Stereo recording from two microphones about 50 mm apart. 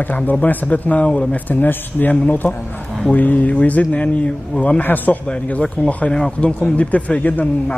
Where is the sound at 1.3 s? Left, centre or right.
Left.